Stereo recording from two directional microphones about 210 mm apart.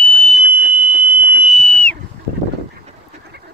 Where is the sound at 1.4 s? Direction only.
Centre (ahead or behind).